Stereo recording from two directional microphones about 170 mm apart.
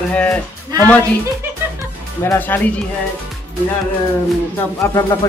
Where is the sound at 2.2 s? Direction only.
10° left (ahead or behind).